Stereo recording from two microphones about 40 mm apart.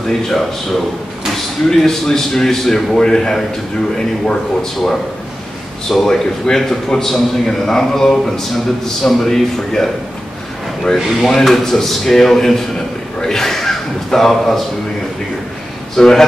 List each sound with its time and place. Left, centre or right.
0.3 s a man's voice: centre
5.9 s a man's voice: centre
11.2 s a man's voice: centre
16.0 s a man's voice: centre